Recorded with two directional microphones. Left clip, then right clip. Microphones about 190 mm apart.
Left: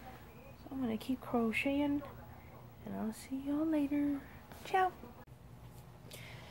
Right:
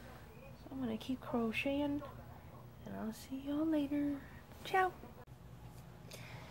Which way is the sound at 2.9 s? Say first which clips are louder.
Left 3 dB; centre (ahead or behind).